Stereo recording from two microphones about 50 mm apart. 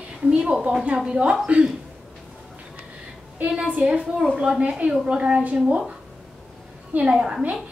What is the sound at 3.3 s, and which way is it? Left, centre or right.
A woman's voice, right.